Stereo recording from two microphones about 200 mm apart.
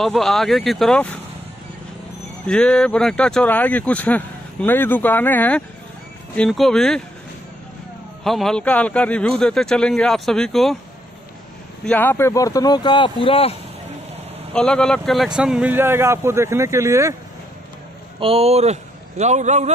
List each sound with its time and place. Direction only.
0.0 s speech: centre (ahead or behind)
2.4 s speech: 5° left (ahead or behind)
8.2 s speech: centre (ahead or behind)
11.8 s speech: 10° left (ahead or behind); by 13.6 s 30° left (ahead or behind)
14.5 s speech: 5° left (ahead or behind); by 17.1 s 15° right (ahead or behind)
18.2 s a man's voice: 30° right (ahead or behind)